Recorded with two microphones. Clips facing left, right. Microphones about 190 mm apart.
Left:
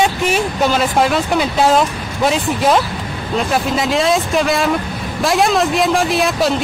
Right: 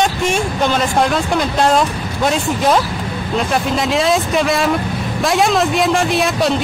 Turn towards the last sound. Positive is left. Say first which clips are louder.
# even
turn(degrees=0)  # may be behind; listen again after turning